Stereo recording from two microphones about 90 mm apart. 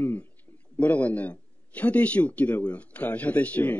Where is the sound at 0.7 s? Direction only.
15° left (ahead or behind).